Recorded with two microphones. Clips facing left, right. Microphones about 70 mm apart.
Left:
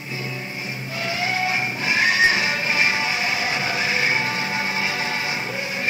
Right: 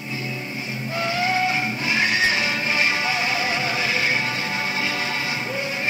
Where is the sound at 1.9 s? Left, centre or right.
Centre.